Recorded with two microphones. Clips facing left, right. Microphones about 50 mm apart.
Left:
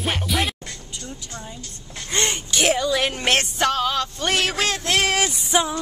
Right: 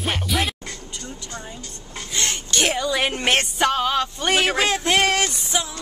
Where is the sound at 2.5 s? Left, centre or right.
Centre.